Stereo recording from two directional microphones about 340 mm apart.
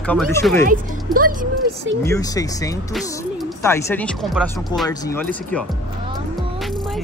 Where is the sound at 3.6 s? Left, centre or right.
Centre.